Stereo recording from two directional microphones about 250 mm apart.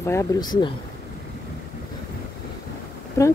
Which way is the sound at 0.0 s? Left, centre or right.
Centre.